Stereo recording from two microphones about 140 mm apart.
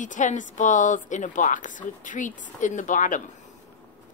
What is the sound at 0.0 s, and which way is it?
A woman's voice, 65° left (ahead or behind).